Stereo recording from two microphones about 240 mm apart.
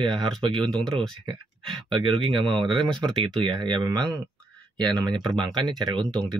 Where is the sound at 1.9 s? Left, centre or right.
Centre.